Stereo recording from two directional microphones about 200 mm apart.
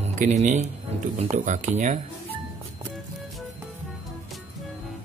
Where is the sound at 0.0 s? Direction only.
35° right (ahead or behind).